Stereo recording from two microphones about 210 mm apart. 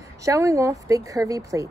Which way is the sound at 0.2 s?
15° right (ahead or behind).